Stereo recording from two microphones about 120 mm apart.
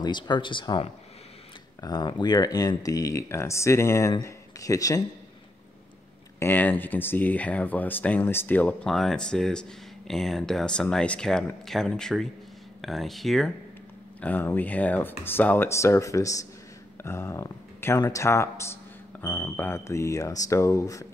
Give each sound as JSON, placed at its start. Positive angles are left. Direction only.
{"t": 0.0, "sound": "speech", "side_deg": 40}
{"t": 6.4, "sound": "speech", "side_deg": 15}
{"t": 14.2, "sound": "speech", "side_deg": 15}